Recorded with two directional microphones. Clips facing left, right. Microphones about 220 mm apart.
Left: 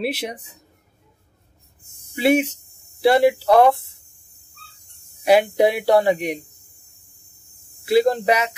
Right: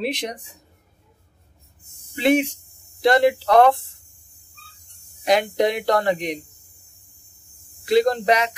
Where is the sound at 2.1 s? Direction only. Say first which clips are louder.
Left 1 dB; 5° left (ahead or behind).